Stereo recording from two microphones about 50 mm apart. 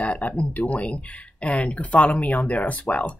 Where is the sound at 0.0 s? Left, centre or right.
Left.